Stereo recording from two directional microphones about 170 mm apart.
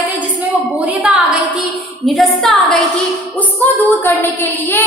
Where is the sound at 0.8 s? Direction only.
10° right (ahead or behind).